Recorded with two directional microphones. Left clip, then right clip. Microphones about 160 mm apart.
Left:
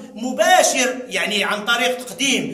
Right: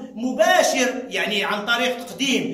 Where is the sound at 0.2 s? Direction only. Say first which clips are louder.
Left 2 dB; 10° right (ahead or behind).